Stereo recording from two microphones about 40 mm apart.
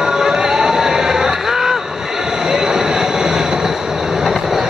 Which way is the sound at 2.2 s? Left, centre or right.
Centre.